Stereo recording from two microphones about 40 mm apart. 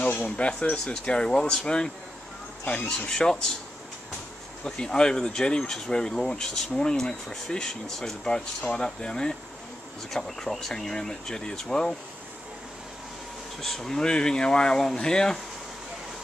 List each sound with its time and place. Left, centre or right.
0.2 s speech: left
1.1 s speech: centre
2.6 s speech: left
3.1 s speech: centre
4.6 s speech: centre
10.1 s speech: centre
13.6 s speech: centre